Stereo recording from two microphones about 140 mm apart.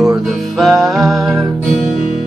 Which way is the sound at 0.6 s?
Centre (ahead or behind).